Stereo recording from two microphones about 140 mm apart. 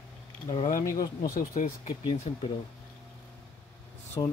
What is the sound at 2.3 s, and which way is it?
Speech, 45° left (ahead or behind).